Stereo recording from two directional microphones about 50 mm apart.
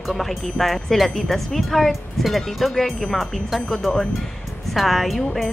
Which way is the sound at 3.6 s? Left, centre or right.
Centre.